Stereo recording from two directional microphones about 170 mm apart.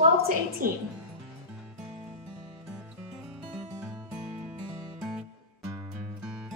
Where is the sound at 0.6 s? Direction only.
55° right (ahead or behind).